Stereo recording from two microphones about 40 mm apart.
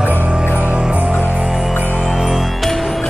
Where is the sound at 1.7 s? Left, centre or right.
Left.